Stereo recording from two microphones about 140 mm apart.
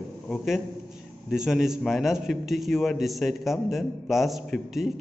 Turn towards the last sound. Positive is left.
turn(degrees=0)  # may be behind; listen again after turning